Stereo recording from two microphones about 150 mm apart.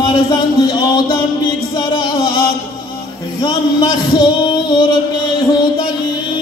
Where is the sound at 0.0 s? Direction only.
30° left (ahead or behind).